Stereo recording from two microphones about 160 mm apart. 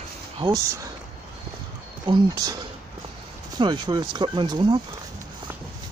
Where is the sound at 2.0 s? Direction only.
25° right (ahead or behind).